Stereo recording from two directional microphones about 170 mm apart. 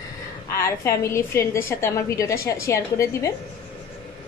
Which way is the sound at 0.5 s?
15° left (ahead or behind).